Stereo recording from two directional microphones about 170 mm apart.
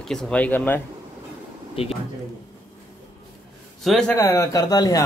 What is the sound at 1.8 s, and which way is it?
Speech, 35° left (ahead or behind).